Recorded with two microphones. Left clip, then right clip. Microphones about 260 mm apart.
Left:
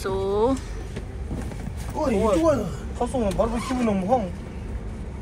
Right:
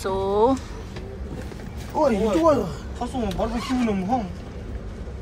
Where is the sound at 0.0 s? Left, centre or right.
Centre.